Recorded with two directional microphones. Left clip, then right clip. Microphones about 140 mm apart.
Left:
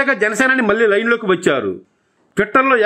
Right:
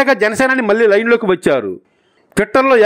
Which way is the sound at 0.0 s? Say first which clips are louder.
Right 3 dB; 45° right (ahead or behind).